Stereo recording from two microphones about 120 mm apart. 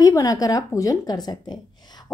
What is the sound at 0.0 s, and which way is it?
A woman's voice, 30° left (ahead or behind).